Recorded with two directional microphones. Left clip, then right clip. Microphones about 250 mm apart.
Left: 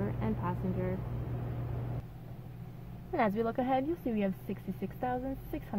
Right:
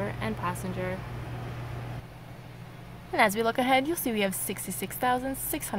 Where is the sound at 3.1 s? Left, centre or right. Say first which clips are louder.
Right 7 dB; centre.